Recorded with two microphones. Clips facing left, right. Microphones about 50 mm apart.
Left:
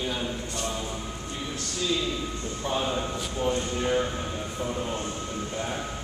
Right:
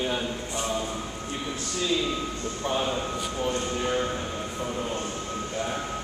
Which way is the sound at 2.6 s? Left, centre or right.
Centre.